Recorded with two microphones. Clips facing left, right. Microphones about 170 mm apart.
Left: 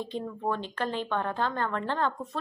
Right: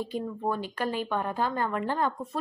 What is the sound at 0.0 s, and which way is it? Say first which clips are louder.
Speech: right 1 dB; 10° right (ahead or behind).